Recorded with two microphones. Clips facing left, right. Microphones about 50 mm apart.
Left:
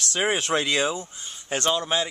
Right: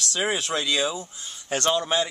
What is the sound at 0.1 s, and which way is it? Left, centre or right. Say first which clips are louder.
Speech: left 3 dB; left.